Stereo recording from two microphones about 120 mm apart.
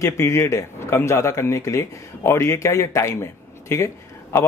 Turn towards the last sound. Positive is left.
turn(degrees=25)  # may be behind; listen again after turning